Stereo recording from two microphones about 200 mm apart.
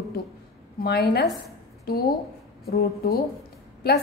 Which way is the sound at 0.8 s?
55° left (ahead or behind).